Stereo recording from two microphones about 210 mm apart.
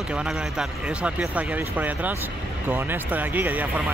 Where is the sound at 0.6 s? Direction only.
5° right (ahead or behind).